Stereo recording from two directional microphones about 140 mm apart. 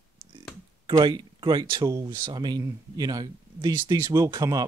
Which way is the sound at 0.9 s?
30° right (ahead or behind).